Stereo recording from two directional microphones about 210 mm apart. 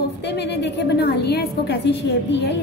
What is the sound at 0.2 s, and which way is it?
A woman's voice, 55° left (ahead or behind).